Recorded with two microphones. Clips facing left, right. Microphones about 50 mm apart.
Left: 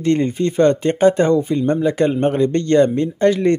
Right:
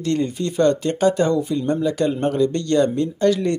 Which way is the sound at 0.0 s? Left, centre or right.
Left.